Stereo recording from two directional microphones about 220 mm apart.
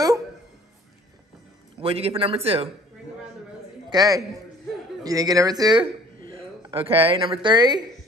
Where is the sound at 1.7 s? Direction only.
25° right (ahead or behind).